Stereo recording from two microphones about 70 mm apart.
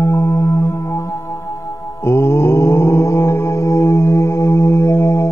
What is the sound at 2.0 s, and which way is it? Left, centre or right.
Mantra, left.